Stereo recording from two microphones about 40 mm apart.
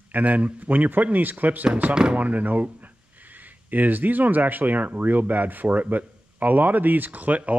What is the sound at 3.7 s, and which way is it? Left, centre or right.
Speech, right.